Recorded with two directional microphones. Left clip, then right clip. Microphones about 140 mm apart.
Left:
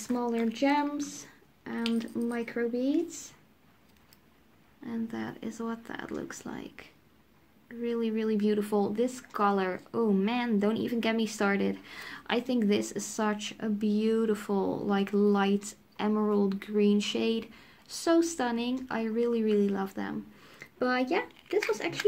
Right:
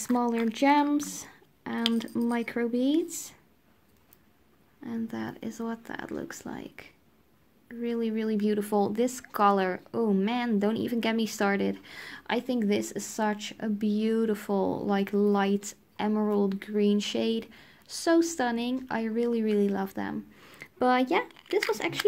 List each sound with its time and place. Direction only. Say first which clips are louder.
0.0 s speech: right 3 dB; 45° right (ahead or behind)
1.8 s speech: right 3 dB; 30° right (ahead or behind)
2.2 s speech: right 2 dB; 55° right (ahead or behind)
4.8 s speech: right 1 dB; 30° right (ahead or behind); by 21.3 s 45° right (ahead or behind)
21.4 s a sound: right 2 dB; 20° right (ahead or behind)